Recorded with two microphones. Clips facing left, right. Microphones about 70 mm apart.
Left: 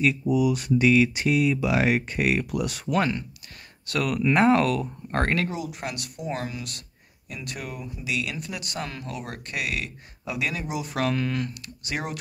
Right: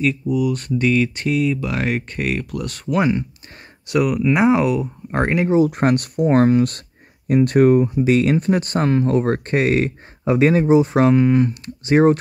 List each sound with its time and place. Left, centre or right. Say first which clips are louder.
0.0 s speech: right 3 dB; centre
3.0 s speech: right 7 dB; centre
5.7 s speech: right 16 dB; right